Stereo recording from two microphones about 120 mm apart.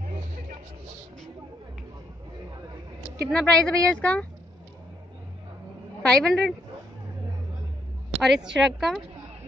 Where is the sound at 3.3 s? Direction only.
5° left (ahead or behind).